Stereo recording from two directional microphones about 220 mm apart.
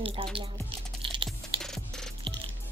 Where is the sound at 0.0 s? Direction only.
25° right (ahead or behind).